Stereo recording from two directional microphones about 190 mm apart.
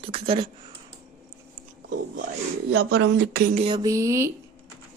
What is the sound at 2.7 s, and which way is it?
Speech, 65° right (ahead or behind).